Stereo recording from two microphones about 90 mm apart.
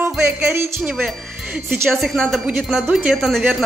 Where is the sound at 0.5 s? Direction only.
30° right (ahead or behind).